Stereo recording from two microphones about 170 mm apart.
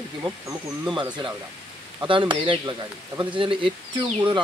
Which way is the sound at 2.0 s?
30° right (ahead or behind).